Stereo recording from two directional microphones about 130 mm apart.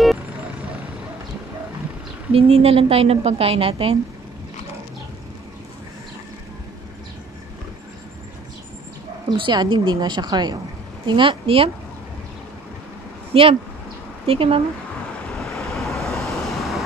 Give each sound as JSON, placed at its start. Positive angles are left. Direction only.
{"t": 2.3, "sound": "a woman's voice", "side_deg": -50}
{"t": 9.4, "sound": "a woman's voice", "side_deg": -35}
{"t": 13.3, "sound": "a woman's voice", "side_deg": -45}
{"t": 15.3, "sound": "vehicle", "side_deg": 0}